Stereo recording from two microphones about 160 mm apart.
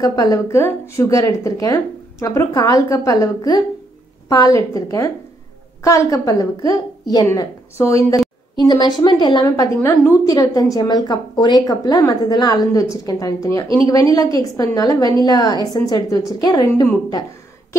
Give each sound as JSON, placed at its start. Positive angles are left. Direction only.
{"t": 0.0, "sound": "a woman's voice", "side_deg": 25}